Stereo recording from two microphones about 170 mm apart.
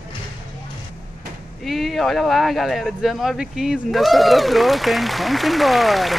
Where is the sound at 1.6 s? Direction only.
Centre (ahead or behind).